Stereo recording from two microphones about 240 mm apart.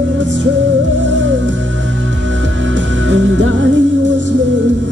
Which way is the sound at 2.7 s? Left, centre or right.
Right.